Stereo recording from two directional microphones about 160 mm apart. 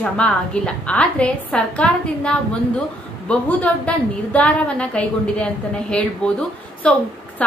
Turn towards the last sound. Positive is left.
turn(degrees=5)  # may be behind; listen again after turning